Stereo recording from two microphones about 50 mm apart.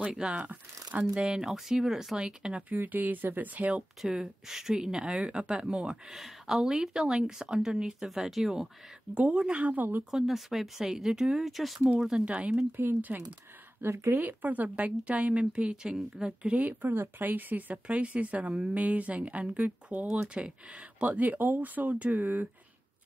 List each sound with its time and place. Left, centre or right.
0.1 s speech: right
1.1 s speech: centre
2.7 s speech: right
4.0 s speech: centre
9.1 s speech: right
10.1 s speech: centre
12.7 s speech: right
13.8 s speech: right
14.1 s speech: right
16.8 s speech: right
17.8 s speech: right